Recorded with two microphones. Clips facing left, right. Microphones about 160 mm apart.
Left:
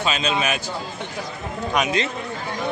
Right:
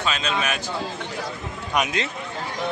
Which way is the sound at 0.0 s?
20° left (ahead or behind).